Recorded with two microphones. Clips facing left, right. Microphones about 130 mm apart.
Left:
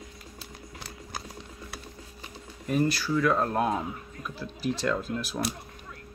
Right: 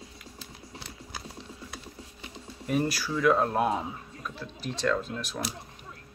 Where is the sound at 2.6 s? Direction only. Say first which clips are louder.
Left 2 dB; 5° right (ahead or behind).